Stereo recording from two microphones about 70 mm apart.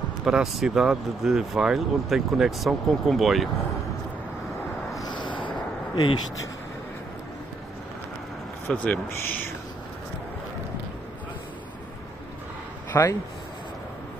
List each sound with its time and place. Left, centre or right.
0.2 s speech: centre
5.0 s a sound: left
5.9 s speech: left
8.7 s speech: left
12.9 s speech: left